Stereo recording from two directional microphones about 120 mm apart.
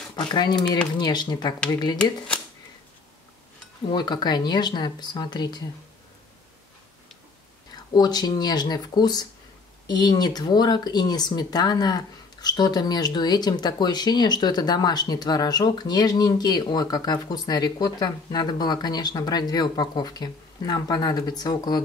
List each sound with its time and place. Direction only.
0.3 s speech: 35° left (ahead or behind)
2.0 s speech: 10° left (ahead or behind)
3.9 s speech: 35° left (ahead or behind)
7.7 s speech: 35° left (ahead or behind)